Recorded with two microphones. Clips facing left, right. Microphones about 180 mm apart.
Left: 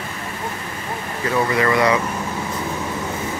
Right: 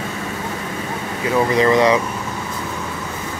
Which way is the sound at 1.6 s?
20° right (ahead or behind).